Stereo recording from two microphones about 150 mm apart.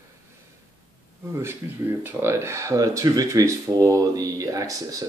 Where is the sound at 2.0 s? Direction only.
15° right (ahead or behind).